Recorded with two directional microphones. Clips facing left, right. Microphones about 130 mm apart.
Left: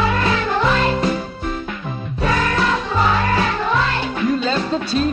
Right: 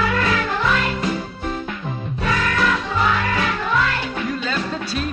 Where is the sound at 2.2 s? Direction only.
30° left (ahead or behind).